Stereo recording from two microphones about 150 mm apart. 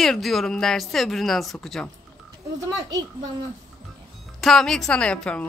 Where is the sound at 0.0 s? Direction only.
Centre (ahead or behind).